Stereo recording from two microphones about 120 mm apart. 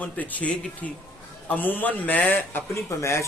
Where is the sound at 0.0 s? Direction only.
10° left (ahead or behind).